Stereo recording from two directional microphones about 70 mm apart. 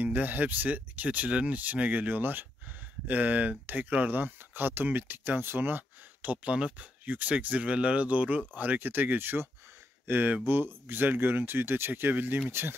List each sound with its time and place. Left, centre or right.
0.0 s speech: right